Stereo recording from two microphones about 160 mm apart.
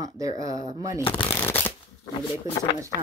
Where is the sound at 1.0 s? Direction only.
30° left (ahead or behind).